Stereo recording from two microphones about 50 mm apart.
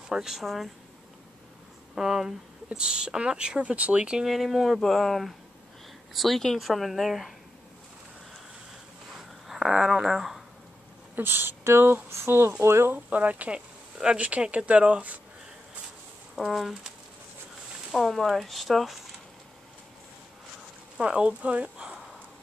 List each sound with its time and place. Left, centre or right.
0.1 s speech: centre
2.0 s speech: centre
4.3 s speech: centre
9.5 s a sound: centre
9.9 s speech: centre
11.1 s speech: right
12.9 s speech: right
16.3 s speech: centre
18.2 s speech: centre
21.0 s speech: right